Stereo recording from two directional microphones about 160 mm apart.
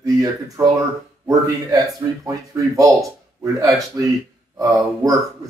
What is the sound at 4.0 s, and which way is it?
Speech, 20° right (ahead or behind).